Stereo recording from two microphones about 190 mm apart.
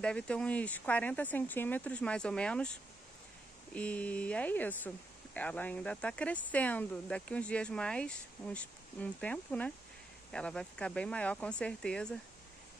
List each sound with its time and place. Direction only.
0.0 s speech: 5° left (ahead or behind)